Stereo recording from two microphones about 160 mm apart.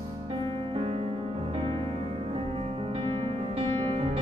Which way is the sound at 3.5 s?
40° right (ahead or behind).